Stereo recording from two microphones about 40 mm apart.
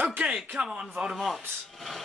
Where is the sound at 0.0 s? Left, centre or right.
Right.